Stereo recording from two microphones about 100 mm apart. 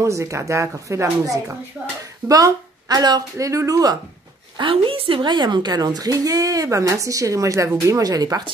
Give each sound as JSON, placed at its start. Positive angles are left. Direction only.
{"t": 0.0, "sound": "a woman's voice", "side_deg": -30}
{"t": 4.6, "sound": "a woman's voice", "side_deg": -60}